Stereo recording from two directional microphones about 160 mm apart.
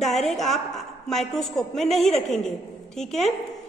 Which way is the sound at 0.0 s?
Centre (ahead or behind).